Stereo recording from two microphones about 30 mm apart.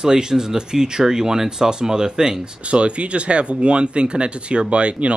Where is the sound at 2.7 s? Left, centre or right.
Right.